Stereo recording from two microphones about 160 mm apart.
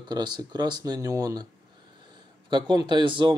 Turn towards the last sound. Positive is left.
turn(degrees=-30)  # may be behind; listen again after turning